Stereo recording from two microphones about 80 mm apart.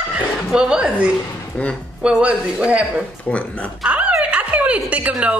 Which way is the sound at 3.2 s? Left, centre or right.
Centre.